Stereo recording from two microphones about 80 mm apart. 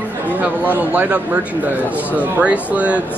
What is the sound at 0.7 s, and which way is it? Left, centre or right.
Speech, right.